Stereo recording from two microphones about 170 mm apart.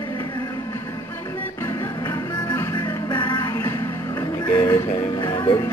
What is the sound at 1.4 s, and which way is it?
Music, 15° left (ahead or behind).